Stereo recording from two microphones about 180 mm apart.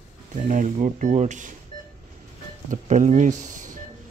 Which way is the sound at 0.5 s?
45° right (ahead or behind).